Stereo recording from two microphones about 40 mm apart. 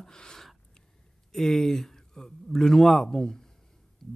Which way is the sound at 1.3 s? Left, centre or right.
Centre.